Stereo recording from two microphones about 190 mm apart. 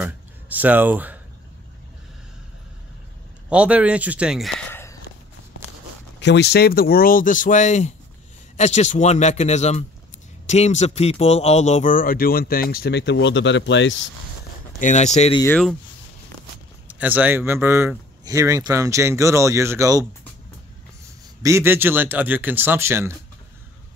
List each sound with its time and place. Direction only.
0.0 s speech: 10° right (ahead or behind)
3.4 s speech: 5° right (ahead or behind)
4.6 s a sound: 10° left (ahead or behind)
6.1 s speech: 65° left (ahead or behind)
14.8 s speech: 40° left (ahead or behind)
15.4 s speech: 10° left (ahead or behind)
16.8 s speech: 10° right (ahead or behind)
21.4 s speech: 15° right (ahead or behind)